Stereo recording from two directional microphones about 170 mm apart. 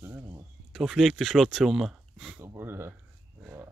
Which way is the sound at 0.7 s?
Centre (ahead or behind).